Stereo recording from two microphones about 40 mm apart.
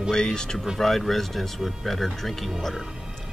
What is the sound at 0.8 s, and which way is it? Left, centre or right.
Speech, centre.